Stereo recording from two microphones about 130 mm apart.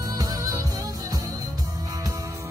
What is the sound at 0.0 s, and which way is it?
Music, 30° right (ahead or behind).